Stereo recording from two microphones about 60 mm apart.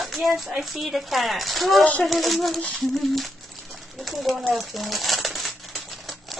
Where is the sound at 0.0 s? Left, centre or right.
Centre.